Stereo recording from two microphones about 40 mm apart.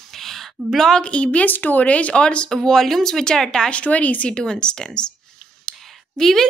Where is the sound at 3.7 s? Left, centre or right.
Left.